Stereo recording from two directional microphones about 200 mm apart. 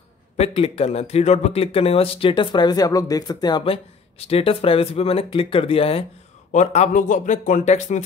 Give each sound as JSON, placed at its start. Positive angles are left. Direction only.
{"t": 0.4, "sound": "speech", "side_deg": 30}